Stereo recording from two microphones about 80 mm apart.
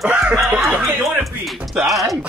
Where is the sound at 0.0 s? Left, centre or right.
Centre.